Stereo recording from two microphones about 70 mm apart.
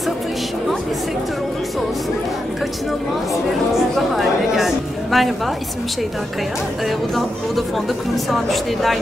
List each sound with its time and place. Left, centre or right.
3.9 s a woman's voice: centre
8.3 s a woman's voice: centre